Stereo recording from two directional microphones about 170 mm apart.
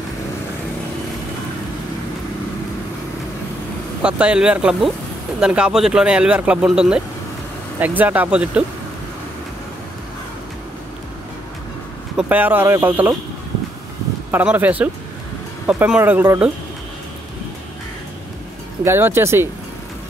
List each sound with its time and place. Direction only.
4.0 s speech: 5° right (ahead or behind)
12.2 s speech: 10° right (ahead or behind)
14.3 s speech: 10° right (ahead or behind)
18.9 s speech: 15° right (ahead or behind)